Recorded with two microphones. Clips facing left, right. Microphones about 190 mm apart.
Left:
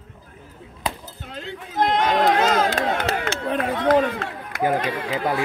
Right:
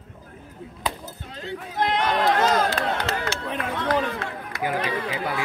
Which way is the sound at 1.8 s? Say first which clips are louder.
Left 3 dB; 45° left (ahead or behind).